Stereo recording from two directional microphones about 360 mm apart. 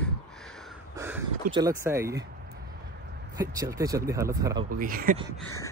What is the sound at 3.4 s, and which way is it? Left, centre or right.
Speech, centre.